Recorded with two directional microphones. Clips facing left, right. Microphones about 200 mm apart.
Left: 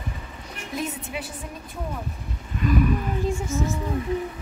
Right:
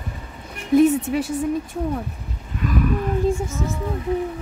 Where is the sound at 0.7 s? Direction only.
65° right (ahead or behind).